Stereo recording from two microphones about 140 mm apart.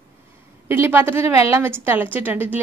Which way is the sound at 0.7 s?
15° right (ahead or behind).